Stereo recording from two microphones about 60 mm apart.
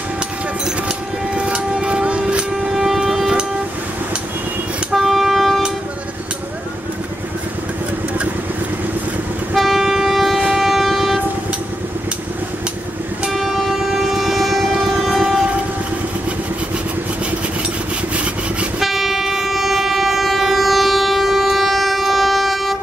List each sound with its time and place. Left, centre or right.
0.8 s vehicle: centre
2.7 s shofar: centre
4.9 s train: centre
9.6 s train: centre
13.3 s train: centre
18.1 s sawing: centre
18.8 s train: centre